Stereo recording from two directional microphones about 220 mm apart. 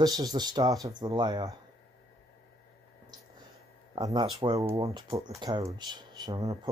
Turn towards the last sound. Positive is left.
turn(degrees=-15)  # may be behind; listen again after turning